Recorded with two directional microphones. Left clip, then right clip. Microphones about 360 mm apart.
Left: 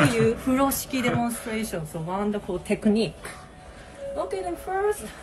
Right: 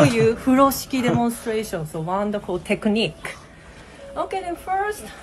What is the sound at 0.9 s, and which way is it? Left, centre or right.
Speech, right.